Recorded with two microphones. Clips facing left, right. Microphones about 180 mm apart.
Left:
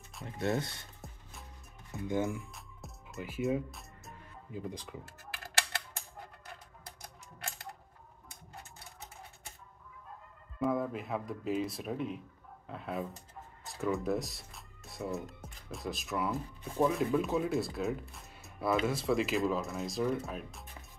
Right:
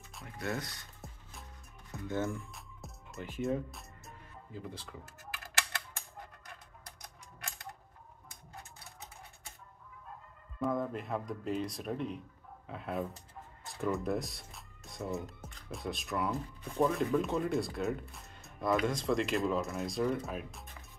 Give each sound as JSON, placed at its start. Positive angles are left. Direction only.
{"t": 0.4, "sound": "speech", "side_deg": 25}
{"t": 2.0, "sound": "speech", "side_deg": 15}
{"t": 2.3, "sound": "music", "side_deg": 0}
{"t": 4.5, "sound": "speech", "side_deg": 15}
{"t": 10.6, "sound": "speech", "side_deg": 5}